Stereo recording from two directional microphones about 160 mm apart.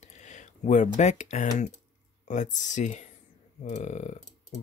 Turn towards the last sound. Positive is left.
turn(degrees=45)  # may be behind; listen again after turning